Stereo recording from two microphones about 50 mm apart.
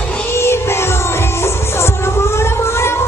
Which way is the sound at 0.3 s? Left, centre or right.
Left.